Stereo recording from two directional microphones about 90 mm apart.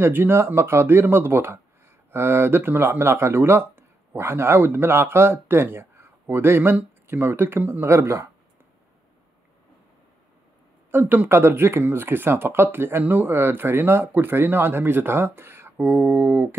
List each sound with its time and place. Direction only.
0.0 s speech: 25° right (ahead or behind)
10.9 s speech: 20° right (ahead or behind)